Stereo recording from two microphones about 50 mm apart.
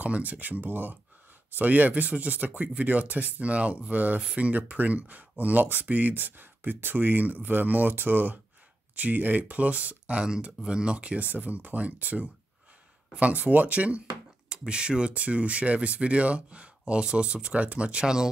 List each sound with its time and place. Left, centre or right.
0.0 s speech: right; by 18.3 s centre